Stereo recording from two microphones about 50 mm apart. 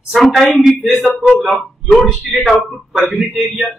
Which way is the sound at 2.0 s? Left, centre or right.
Centre.